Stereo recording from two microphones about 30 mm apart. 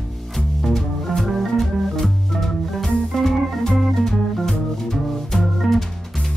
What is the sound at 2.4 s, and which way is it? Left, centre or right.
Organ, centre.